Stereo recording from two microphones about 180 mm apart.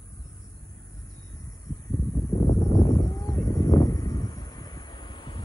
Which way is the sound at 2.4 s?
20° left (ahead or behind).